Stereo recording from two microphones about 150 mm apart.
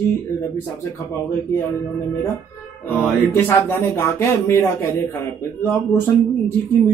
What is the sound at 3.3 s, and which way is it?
A man's voice, 15° left (ahead or behind).